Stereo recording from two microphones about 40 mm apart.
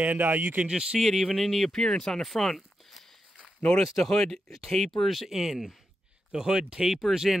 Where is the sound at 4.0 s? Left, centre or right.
Centre.